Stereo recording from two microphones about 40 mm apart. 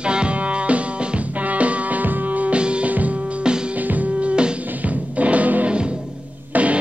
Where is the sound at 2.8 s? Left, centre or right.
Right.